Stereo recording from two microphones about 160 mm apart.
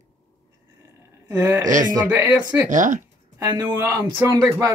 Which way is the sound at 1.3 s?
20° right (ahead or behind).